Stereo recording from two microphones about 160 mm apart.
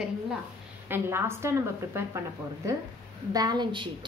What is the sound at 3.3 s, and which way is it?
Speech, 25° right (ahead or behind).